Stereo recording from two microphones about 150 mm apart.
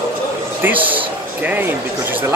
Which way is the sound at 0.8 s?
35° right (ahead or behind).